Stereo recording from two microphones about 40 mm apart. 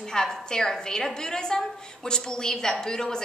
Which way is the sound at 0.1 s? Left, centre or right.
Centre.